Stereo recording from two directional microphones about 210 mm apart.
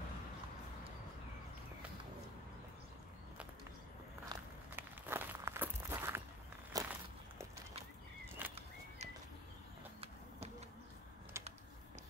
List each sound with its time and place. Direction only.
4.3 s walk: 10° right (ahead or behind)
8.5 s bird flight: 30° right (ahead or behind)
11.3 s a sound: 10° right (ahead or behind)